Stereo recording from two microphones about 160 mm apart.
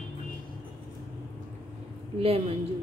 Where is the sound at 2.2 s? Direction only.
40° right (ahead or behind).